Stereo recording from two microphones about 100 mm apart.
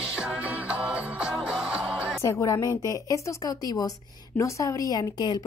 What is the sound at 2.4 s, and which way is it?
A woman's voice, 35° left (ahead or behind).